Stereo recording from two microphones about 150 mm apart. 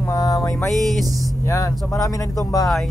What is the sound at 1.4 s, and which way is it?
Speech, 20° left (ahead or behind).